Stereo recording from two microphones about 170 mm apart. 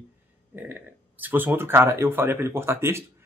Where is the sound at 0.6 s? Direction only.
10° right (ahead or behind).